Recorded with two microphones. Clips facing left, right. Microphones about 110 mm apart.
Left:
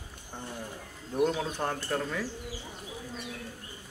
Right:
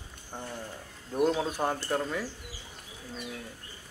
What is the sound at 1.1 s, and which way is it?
Speech, 5° right (ahead or behind).